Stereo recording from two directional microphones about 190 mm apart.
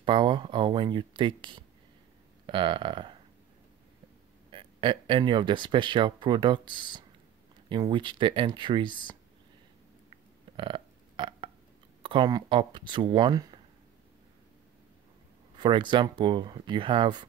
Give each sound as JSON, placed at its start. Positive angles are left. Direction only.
{"t": 0.0, "sound": "speech", "side_deg": -25}
{"t": 2.4, "sound": "a sound", "side_deg": -25}
{"t": 4.5, "sound": "speech", "side_deg": -25}
{"t": 10.5, "sound": "burping", "side_deg": -25}
{"t": 12.0, "sound": "speech", "side_deg": -25}
{"t": 15.5, "sound": "speech", "side_deg": -25}